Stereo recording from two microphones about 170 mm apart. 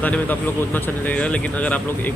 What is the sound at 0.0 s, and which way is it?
Speech, 10° left (ahead or behind).